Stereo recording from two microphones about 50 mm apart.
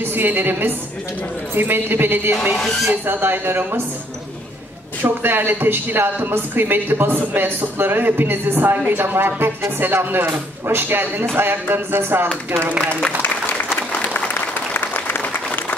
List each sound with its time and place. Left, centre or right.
0.1 s speech: right
2.5 s speech: centre
2.9 s speech: right
5.0 s speech: right
13.2 s applause: left